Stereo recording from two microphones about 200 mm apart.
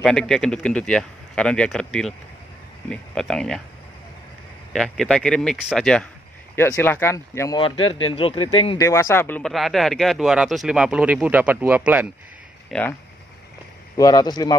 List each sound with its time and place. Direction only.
0.0 s speech: 5° left (ahead or behind)
4.7 s speech: centre (ahead or behind); by 8.5 s 25° left (ahead or behind)
8.7 s speech: 15° left (ahead or behind)
13.9 s speech: 20° left (ahead or behind)